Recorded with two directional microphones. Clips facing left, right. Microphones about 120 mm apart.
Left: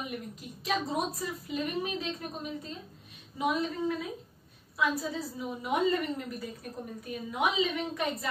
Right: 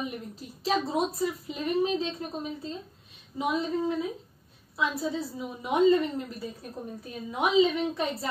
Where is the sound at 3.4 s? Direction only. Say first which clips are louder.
Even; 25° right (ahead or behind).